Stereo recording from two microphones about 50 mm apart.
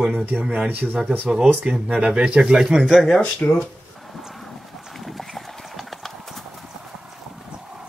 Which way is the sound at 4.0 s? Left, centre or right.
Centre.